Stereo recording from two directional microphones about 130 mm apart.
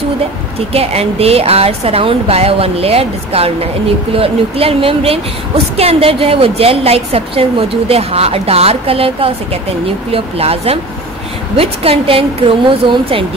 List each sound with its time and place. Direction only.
0.6 s a woman's voice: 50° right (ahead or behind)